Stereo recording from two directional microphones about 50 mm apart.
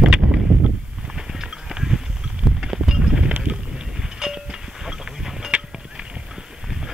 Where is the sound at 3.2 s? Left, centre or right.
Centre.